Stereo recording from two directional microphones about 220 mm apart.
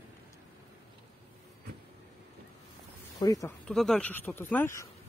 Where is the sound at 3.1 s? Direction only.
15° left (ahead or behind).